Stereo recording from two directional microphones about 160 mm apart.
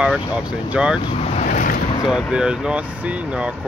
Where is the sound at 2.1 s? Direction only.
5° right (ahead or behind).